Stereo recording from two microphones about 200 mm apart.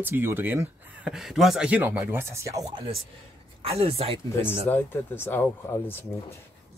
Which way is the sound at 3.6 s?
30° right (ahead or behind).